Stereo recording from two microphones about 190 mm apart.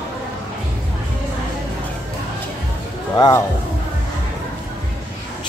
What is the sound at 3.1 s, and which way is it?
Speech, 15° left (ahead or behind).